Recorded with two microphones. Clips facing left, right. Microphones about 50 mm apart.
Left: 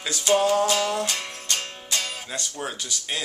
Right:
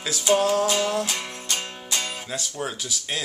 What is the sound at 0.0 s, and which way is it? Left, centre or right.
Music, centre.